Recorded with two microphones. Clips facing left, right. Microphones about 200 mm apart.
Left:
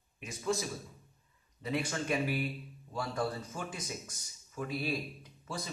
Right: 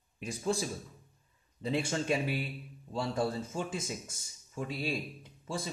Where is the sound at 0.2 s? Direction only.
35° right (ahead or behind).